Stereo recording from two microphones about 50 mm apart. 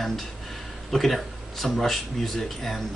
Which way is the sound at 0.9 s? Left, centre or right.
Centre.